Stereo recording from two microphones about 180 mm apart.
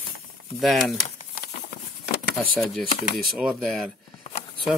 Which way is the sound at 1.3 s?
55° left (ahead or behind).